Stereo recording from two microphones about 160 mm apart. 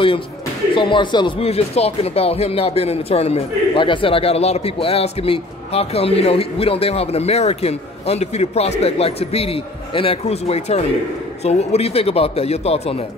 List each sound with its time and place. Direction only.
0.7 s speech: 30° left (ahead or behind)